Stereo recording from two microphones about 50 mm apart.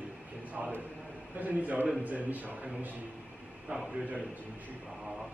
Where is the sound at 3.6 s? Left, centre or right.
Centre.